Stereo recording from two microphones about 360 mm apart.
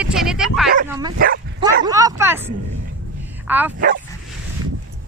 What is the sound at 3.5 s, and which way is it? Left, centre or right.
Speech, centre.